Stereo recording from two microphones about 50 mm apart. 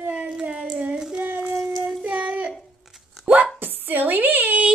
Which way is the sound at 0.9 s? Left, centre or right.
Centre.